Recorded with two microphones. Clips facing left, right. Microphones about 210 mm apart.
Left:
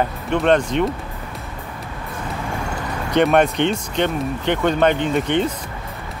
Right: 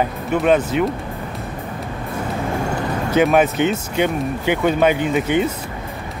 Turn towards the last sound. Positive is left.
turn(degrees=-5)  # may be behind; listen again after turning